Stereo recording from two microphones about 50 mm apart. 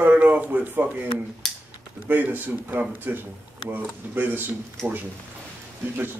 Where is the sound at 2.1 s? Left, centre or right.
Right.